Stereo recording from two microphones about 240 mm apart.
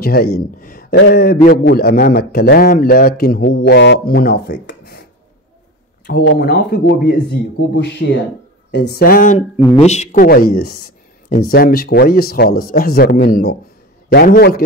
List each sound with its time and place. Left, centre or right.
0.0 s a man's voice: left
6.0 s a man's voice: left